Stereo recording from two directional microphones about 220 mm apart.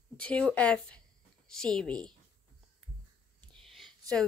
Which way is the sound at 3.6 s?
Centre (ahead or behind).